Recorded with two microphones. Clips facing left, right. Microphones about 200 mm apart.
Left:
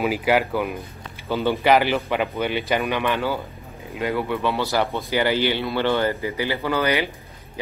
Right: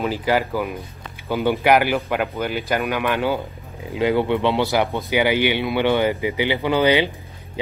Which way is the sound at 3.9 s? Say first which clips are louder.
Right 5 dB; 25° right (ahead or behind).